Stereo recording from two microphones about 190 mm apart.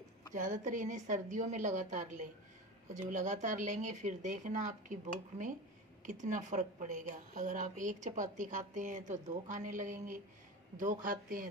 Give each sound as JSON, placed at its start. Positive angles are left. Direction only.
{"t": 0.3, "sound": "a woman's voice", "side_deg": -40}